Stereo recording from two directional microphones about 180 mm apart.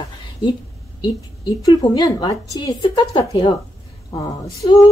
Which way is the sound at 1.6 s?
20° left (ahead or behind).